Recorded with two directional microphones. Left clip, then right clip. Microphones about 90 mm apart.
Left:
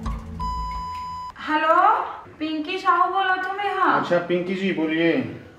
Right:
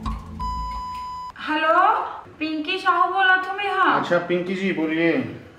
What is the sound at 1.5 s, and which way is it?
A man's voice, 40° right (ahead or behind).